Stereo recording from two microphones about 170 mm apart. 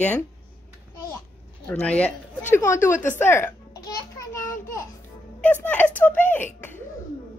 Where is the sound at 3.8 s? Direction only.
20° left (ahead or behind).